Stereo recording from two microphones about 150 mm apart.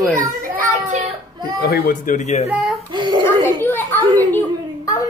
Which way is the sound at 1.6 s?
90° left.